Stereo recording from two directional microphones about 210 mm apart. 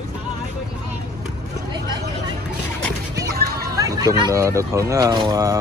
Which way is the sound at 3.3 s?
50° right (ahead or behind).